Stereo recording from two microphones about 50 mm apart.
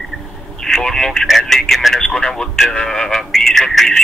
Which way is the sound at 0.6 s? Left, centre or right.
Centre.